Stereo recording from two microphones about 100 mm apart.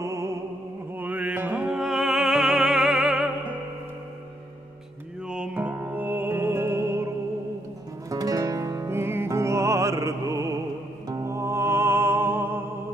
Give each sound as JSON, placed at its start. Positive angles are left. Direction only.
{"t": 0.0, "sound": "music", "side_deg": -30}
{"t": 0.9, "sound": "music", "side_deg": -15}
{"t": 5.3, "sound": "music", "side_deg": -10}
{"t": 8.1, "sound": "music", "side_deg": -35}